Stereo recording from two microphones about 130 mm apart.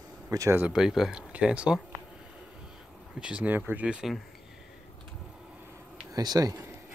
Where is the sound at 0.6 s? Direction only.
5° right (ahead or behind).